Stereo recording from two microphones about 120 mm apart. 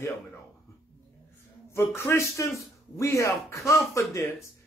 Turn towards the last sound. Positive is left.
turn(degrees=20)  # may be behind; listen again after turning